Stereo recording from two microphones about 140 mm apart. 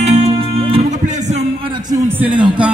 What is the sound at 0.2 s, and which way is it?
Music, 45° right (ahead or behind).